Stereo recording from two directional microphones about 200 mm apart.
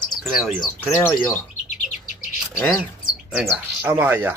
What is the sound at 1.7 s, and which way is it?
Bird, 40° left (ahead or behind).